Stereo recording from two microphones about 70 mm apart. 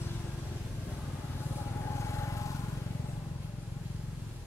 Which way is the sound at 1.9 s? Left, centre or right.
Left.